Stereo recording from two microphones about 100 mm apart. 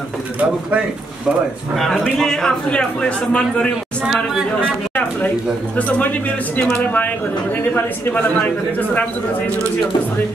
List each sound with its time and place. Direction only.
0.4 s speech: 15° right (ahead or behind)
2.1 s a man's voice: 5° left (ahead or behind)
4.0 s speech: 5° right (ahead or behind)
4.6 s a man's voice: 15° left (ahead or behind)